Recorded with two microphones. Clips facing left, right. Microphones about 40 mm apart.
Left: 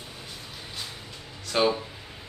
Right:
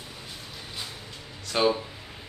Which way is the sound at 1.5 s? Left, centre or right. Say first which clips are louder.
Even; centre.